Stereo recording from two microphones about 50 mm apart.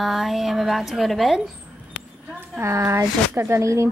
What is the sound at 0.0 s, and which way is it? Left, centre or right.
A woman's voice, centre.